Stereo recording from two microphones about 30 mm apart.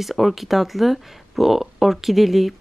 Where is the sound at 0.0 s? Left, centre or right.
Centre.